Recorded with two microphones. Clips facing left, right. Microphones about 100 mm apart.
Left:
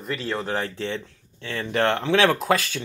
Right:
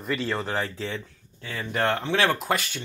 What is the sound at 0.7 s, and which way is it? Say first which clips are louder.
Speech: left 3 dB; 60° left (ahead or behind).